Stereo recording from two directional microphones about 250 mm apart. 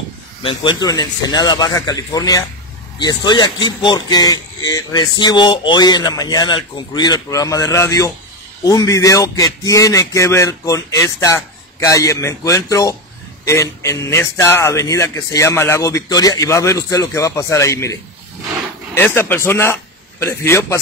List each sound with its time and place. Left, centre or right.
0.4 s speech: centre
18.9 s a man's voice: centre